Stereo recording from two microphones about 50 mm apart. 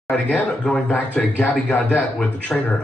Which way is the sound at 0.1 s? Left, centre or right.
Left.